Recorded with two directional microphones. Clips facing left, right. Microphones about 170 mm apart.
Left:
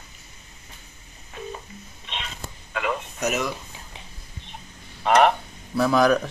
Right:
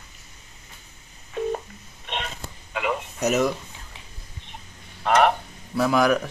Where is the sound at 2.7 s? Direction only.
15° right (ahead or behind).